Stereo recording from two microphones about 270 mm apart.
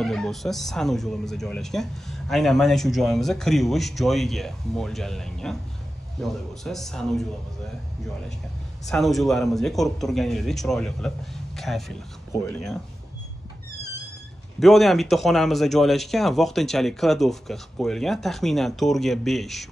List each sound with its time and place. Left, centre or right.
0.0 s speech: centre
8.8 s speech: centre
14.6 s speech: centre